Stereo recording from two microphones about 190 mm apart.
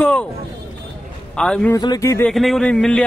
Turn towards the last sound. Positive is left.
turn(degrees=5)  # may be behind; listen again after turning